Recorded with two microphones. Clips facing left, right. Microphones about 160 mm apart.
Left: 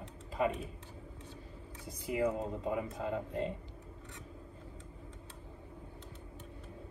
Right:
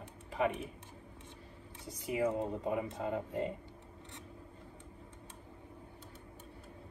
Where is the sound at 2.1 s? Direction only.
5° right (ahead or behind).